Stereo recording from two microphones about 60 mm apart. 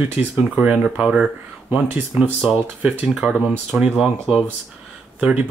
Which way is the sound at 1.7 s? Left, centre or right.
Right.